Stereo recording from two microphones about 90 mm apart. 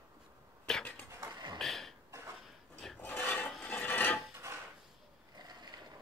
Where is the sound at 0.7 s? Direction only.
5° left (ahead or behind).